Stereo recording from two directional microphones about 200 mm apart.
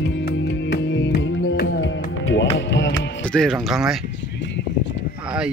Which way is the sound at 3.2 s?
5° left (ahead or behind).